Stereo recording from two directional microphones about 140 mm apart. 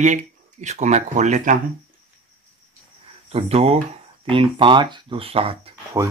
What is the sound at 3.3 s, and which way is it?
Speech, 45° right (ahead or behind).